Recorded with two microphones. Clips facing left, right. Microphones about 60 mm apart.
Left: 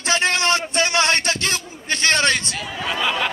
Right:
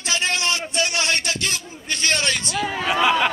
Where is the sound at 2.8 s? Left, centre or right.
Centre.